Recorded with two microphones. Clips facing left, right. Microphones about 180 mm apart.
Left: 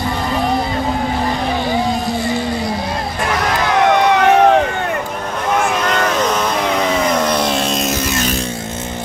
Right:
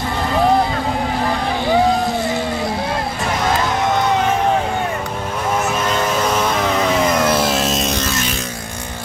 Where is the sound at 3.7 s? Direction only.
80° left.